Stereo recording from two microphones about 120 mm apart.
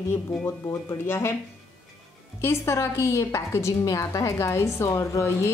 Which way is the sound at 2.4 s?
20° left (ahead or behind).